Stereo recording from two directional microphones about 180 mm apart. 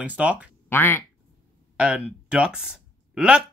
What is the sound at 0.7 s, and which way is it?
Speech, 10° left (ahead or behind).